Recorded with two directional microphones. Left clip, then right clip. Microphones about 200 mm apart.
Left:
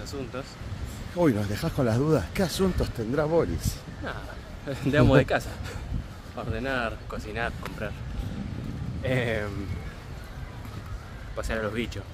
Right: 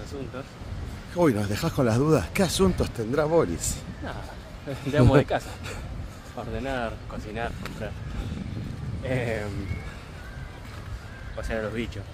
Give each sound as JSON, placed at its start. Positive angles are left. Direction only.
{"t": 1.1, "sound": "speech", "side_deg": -15}
{"t": 4.6, "sound": "speech", "side_deg": 40}
{"t": 9.0, "sound": "speech", "side_deg": 45}
{"t": 11.3, "sound": "speech", "side_deg": 40}